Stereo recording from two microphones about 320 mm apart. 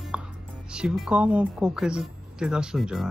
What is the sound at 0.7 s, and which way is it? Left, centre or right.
Speech, centre.